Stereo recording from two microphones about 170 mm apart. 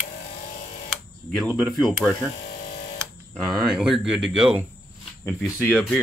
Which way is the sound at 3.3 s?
Centre (ahead or behind).